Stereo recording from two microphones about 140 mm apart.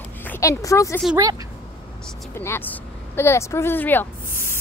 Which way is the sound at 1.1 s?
25° right (ahead or behind).